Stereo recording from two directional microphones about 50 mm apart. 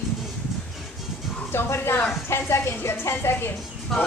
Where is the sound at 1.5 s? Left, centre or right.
Left.